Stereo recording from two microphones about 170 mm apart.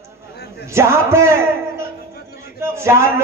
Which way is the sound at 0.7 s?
15° right (ahead or behind).